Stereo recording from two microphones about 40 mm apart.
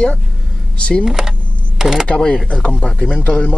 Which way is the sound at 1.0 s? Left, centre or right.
Centre.